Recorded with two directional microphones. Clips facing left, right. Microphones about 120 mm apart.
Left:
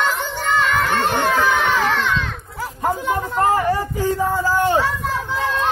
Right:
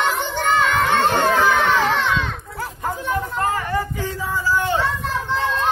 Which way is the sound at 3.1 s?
35° left (ahead or behind).